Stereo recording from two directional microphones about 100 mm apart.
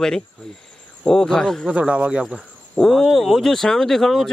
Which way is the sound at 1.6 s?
10° right (ahead or behind).